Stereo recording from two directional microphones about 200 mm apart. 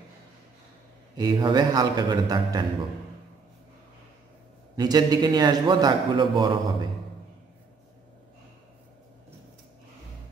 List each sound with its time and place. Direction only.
1.1 s a man's voice: 20° right (ahead or behind)
4.7 s a man's voice: 20° right (ahead or behind)